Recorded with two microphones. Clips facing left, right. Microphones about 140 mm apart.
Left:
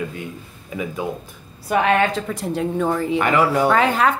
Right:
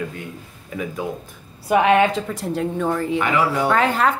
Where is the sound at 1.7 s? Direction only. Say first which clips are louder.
Right 2 dB; 15° right (ahead or behind).